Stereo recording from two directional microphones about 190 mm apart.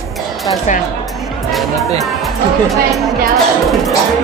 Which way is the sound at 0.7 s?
40° left (ahead or behind).